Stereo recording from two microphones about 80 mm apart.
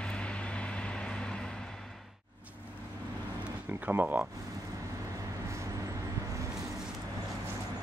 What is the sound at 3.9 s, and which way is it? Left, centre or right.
Speech, right.